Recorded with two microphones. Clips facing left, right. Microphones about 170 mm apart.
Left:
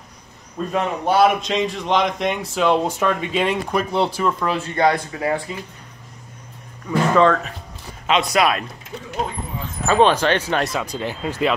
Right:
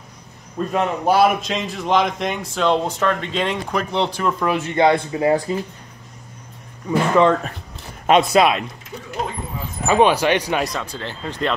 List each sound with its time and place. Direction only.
0.7 s a man's voice: 5° right (ahead or behind)
4.4 s speech: 20° right (ahead or behind)
6.9 s speech: 20° right (ahead or behind)
9.8 s speech: 15° right (ahead or behind)
10.6 s speech: 10° left (ahead or behind)